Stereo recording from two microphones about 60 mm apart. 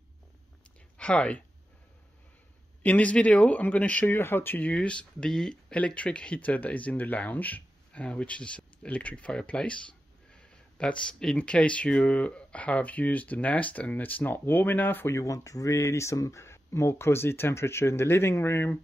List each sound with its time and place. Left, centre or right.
0.9 s speech: centre
2.8 s speech: left
4.1 s speech: left
4.6 s speech: centre
5.7 s speech: left
15.1 s speech: left